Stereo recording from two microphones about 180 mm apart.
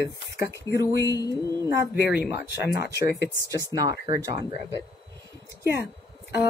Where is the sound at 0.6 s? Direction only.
70° left (ahead or behind).